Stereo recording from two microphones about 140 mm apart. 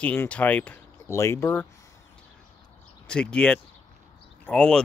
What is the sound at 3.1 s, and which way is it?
Speech, 5° left (ahead or behind).